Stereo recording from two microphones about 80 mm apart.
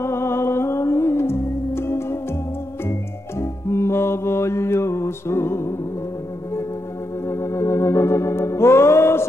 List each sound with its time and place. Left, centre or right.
0.0 s music: left
7.2 s organ: left